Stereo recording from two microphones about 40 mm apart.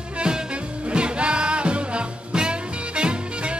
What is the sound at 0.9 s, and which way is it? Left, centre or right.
Music, right.